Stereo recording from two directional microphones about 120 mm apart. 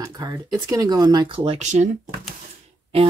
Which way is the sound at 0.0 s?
30° right (ahead or behind).